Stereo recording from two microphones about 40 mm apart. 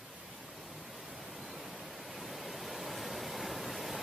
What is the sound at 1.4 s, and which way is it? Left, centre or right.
Pink noise, centre.